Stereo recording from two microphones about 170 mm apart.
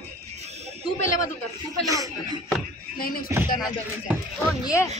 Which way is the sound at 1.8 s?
20° right (ahead or behind).